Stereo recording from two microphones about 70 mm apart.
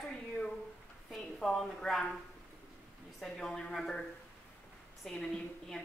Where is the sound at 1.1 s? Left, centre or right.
Centre.